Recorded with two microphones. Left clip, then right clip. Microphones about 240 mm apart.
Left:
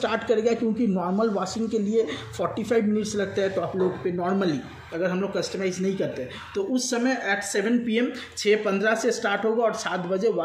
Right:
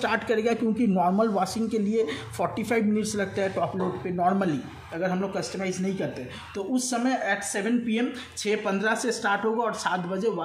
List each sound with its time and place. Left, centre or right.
0.0 s speech: centre